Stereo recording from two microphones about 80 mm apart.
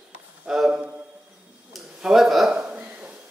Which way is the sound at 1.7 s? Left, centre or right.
Centre.